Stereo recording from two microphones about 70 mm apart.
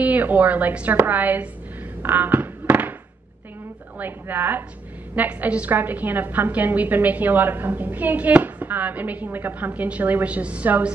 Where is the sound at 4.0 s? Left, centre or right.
Right.